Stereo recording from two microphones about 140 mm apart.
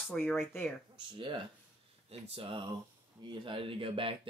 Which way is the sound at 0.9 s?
35° right (ahead or behind).